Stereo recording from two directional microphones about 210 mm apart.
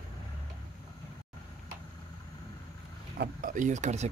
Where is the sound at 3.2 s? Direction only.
40° right (ahead or behind).